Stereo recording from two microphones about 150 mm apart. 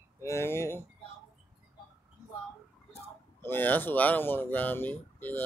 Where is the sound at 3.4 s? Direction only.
15° left (ahead or behind).